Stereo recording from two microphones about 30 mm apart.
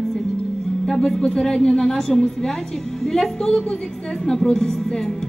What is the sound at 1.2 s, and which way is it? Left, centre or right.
Speech, left.